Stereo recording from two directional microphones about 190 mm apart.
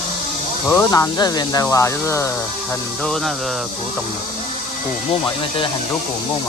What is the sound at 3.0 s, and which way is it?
Speech, centre (ahead or behind).